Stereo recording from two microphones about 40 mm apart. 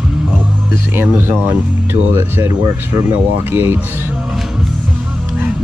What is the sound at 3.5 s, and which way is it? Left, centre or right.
Speech, right.